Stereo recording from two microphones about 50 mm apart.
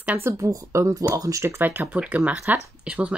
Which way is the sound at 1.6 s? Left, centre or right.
Right.